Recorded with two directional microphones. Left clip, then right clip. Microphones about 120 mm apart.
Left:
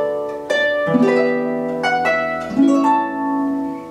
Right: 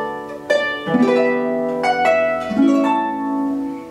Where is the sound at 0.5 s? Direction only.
Centre (ahead or behind).